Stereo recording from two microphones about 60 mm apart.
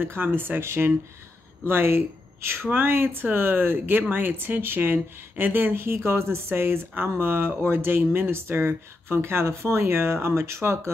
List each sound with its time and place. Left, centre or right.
0.0 s speech: right